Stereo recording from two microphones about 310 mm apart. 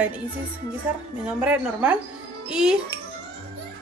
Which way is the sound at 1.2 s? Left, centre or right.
Centre.